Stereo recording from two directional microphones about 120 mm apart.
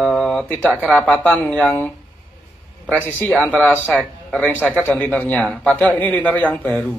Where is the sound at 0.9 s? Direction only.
10° left (ahead or behind).